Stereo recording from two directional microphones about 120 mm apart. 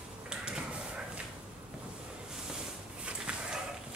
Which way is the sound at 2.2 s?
5° right (ahead or behind).